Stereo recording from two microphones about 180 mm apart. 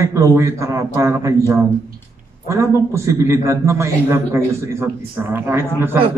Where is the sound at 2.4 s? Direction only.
15° right (ahead or behind).